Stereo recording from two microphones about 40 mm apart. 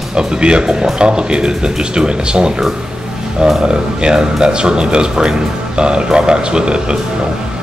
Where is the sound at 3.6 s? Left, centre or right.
Right.